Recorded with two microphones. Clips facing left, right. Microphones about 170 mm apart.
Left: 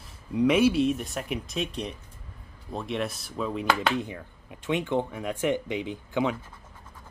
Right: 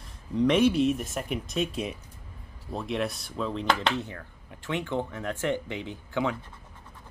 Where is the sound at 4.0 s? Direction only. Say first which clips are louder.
Left 3 dB; 15° left (ahead or behind).